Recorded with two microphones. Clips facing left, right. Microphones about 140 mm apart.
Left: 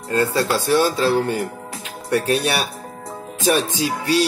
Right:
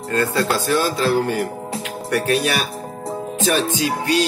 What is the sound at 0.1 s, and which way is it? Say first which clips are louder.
Speech: left 1 dB; 20° left (ahead or behind).